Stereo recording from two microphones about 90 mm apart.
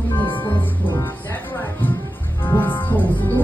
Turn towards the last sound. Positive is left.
turn(degrees=20)  # may be behind; listen again after turning